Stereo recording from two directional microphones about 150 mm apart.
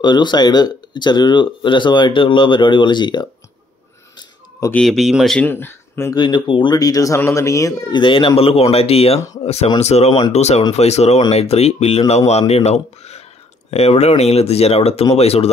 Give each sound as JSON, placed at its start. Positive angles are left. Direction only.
{"t": 0.0, "sound": "speech", "side_deg": 30}
{"t": 4.2, "sound": "a sound", "side_deg": 20}
{"t": 4.7, "sound": "speech", "side_deg": 0}
{"t": 5.5, "sound": "speech", "side_deg": 15}
{"t": 6.1, "sound": "speech", "side_deg": 30}
{"t": 8.0, "sound": "speech", "side_deg": 35}